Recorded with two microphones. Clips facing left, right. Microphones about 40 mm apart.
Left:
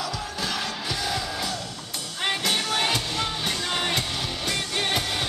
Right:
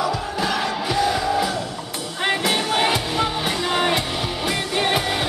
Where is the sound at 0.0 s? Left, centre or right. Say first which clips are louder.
Right 7 dB; centre.